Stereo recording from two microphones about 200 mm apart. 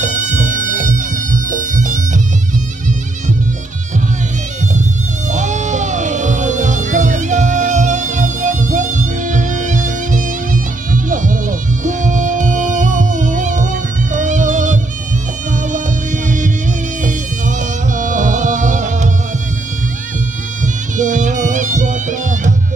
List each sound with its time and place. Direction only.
0.0 s music: 35° right (ahead or behind)
5.3 s music: 35° right (ahead or behind)
16.3 s music: 40° right (ahead or behind)
20.6 s music: 40° right (ahead or behind)